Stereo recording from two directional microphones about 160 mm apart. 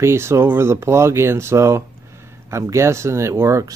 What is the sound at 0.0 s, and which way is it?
Speech, 15° right (ahead or behind).